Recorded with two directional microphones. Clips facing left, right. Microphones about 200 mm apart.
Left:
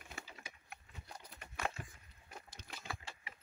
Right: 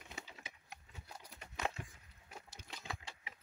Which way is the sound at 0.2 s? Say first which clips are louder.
Right 1 dB; 20° right (ahead or behind).